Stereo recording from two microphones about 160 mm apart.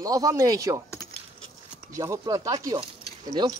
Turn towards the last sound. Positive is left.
turn(degrees=-20)  # may be behind; listen again after turning